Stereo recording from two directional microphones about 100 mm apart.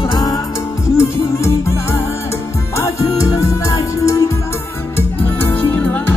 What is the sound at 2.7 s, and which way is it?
Music, 30° left (ahead or behind).